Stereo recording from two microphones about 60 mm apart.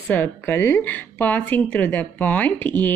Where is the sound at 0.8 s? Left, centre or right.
Left.